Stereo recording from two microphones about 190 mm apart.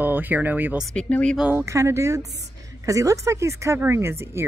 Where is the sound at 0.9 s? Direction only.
5° left (ahead or behind).